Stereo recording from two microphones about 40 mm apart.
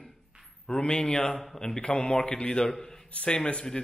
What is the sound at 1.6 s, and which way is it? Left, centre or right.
A man's voice, centre.